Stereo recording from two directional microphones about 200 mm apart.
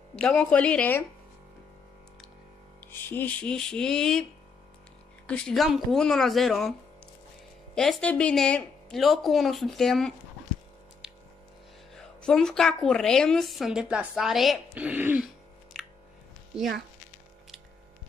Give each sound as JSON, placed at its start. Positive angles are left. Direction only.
{"t": 0.1, "sound": "speech", "side_deg": 5}
{"t": 2.8, "sound": "a woman's voice", "side_deg": 10}
{"t": 7.7, "sound": "a woman's voice", "side_deg": 5}
{"t": 11.9, "sound": "a woman's voice", "side_deg": 5}
{"t": 15.7, "sound": "a sound", "side_deg": 0}